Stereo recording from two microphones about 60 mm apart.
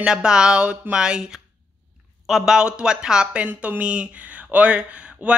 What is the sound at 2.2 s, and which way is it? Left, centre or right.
Speech, centre.